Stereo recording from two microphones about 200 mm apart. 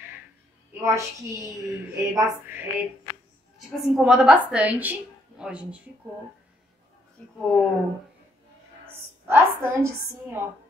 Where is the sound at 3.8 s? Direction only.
5° right (ahead or behind).